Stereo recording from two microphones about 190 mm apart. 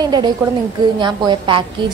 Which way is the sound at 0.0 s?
20° right (ahead or behind).